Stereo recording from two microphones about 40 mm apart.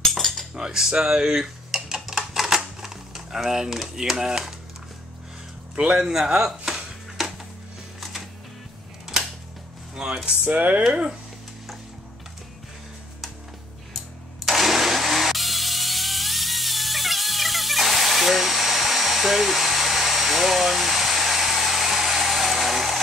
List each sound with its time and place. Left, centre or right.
0.1 s cutlery: centre
0.6 s cutlery: centre
0.9 s typewriter: centre
5.8 s music: centre
9.9 s speech: right
10.4 s speech: right
13.9 s engine starting: centre